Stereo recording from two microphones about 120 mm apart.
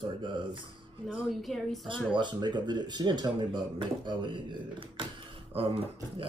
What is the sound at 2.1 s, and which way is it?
Speech, 40° right (ahead or behind).